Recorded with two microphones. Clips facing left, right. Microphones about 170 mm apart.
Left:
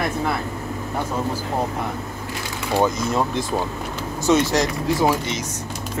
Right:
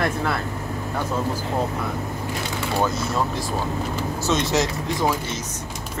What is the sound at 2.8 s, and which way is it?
Speech, 20° left (ahead or behind).